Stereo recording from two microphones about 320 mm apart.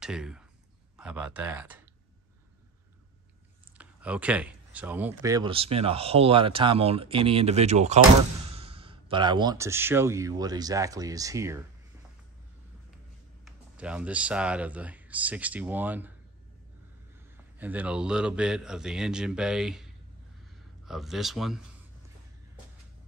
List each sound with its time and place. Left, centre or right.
0.0 s speech: centre
3.7 s speech: centre
13.7 s speech: centre
17.6 s speech: centre